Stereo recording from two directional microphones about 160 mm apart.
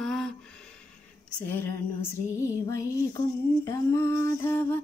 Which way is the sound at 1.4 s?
10° left (ahead or behind).